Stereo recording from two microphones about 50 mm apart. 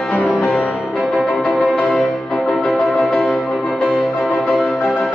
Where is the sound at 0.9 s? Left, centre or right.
Centre.